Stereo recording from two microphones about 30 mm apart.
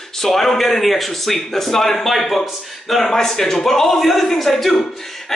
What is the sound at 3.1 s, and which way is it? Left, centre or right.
A man's voice, centre.